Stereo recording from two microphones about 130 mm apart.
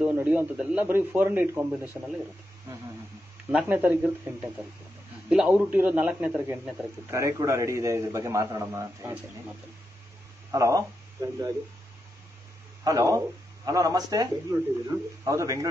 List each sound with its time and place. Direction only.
0.0 s a man's voice: 15° right (ahead or behind)
3.5 s a man's voice: 15° right (ahead or behind)
7.1 s a man's voice: 20° right (ahead or behind)
10.5 s a man's voice: 25° right (ahead or behind)
12.8 s a man's voice: 25° right (ahead or behind)